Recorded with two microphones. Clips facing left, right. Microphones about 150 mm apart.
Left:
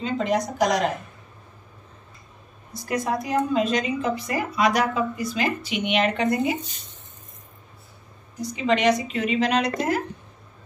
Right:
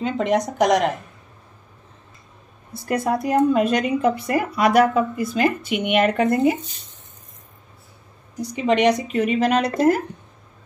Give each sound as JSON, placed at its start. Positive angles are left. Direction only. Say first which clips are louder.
{"t": 0.0, "sound": "a woman's voice", "louder": "right 3 dB", "side_deg": -65}
{"t": 2.9, "sound": "a woman's voice", "louder": "right 4 dB", "side_deg": -60}
{"t": 8.7, "sound": "a woman's voice", "louder": "right 3 dB", "side_deg": -55}